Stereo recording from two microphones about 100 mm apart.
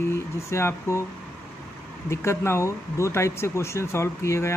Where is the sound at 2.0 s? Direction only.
25° left (ahead or behind).